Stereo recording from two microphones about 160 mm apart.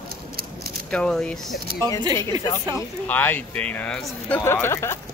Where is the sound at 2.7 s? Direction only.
10° left (ahead or behind).